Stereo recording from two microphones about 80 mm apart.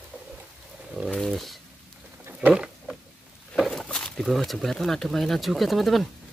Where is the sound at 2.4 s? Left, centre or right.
Centre.